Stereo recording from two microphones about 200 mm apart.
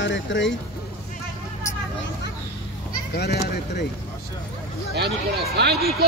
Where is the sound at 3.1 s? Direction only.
55° left (ahead or behind).